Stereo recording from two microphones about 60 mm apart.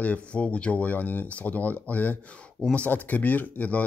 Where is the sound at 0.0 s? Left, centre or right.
Left.